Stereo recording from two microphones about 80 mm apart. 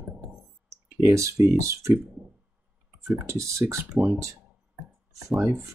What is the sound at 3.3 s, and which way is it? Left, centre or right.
Speech, right.